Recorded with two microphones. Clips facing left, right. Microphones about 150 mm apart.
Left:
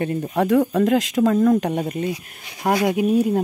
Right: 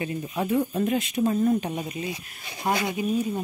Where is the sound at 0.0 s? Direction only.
55° left (ahead or behind); by 1.9 s 85° left.